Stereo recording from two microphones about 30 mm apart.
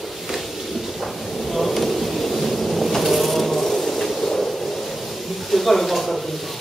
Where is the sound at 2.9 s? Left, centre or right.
Centre.